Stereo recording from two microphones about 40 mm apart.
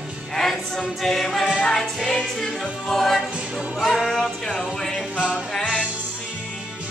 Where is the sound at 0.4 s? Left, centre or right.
Centre.